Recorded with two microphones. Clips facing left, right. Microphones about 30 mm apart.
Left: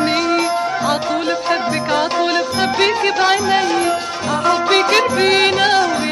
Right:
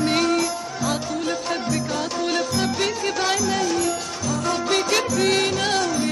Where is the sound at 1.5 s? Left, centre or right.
Left.